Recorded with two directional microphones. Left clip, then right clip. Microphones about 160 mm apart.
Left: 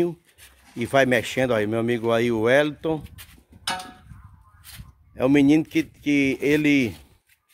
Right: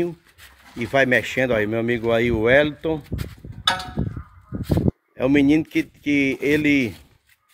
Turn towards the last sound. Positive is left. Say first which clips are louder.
# right 1 dB
turn(degrees=25)  # may be behind; listen again after turning